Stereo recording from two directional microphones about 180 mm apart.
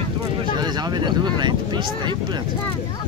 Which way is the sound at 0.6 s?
25° right (ahead or behind).